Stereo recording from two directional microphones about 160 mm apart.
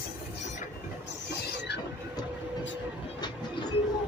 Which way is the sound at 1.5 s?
90° left.